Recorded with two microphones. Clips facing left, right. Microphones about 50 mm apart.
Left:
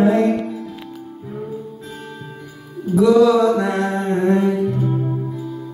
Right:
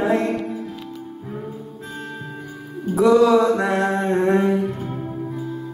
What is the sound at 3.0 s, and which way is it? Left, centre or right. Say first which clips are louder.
Mantra: left 2 dB; right.